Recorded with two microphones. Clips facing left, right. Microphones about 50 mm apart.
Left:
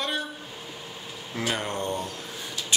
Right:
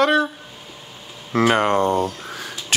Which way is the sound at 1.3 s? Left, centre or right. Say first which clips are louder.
Right 13 dB; right.